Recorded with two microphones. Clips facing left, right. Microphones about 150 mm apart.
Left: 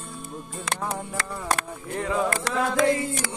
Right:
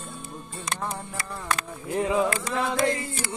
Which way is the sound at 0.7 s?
75° left (ahead or behind).